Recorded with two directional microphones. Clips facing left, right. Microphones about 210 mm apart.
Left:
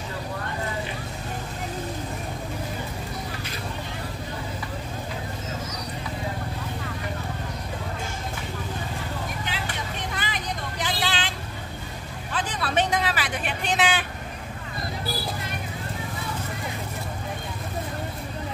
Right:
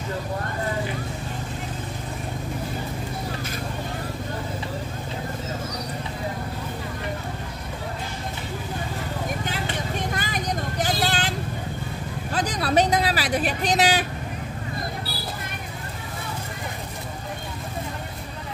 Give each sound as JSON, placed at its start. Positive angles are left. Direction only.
{"t": 9.4, "sound": "vehicle", "side_deg": -45}